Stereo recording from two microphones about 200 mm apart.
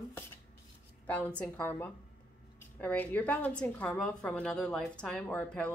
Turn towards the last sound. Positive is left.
turn(degrees=5)  # may be behind; listen again after turning